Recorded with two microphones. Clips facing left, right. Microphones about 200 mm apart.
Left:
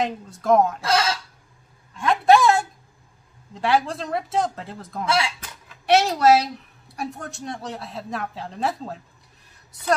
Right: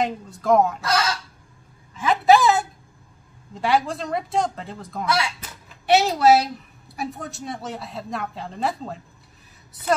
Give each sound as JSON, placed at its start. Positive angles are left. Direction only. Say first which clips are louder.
{"t": 0.0, "sound": "speech", "louder": "right 1 dB", "side_deg": 0}
{"t": 0.7, "sound": "speech", "louder": "left 1 dB", "side_deg": 25}
{"t": 2.0, "sound": "a sound", "louder": "even", "side_deg": 0}
{"t": 3.5, "sound": "speech", "louder": "even", "side_deg": 0}
{"t": 5.0, "sound": "speech", "louder": "left 1 dB", "side_deg": 25}
{"t": 5.4, "sound": "speech", "louder": "right 1 dB", "side_deg": 0}